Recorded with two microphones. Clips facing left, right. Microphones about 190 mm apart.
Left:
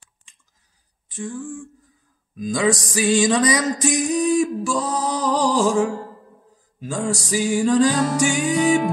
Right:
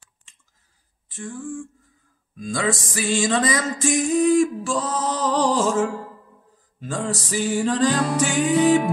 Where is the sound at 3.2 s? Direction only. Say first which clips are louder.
Left 3 dB; 15° left (ahead or behind).